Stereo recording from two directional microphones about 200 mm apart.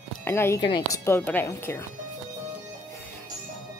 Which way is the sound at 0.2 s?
10° left (ahead or behind).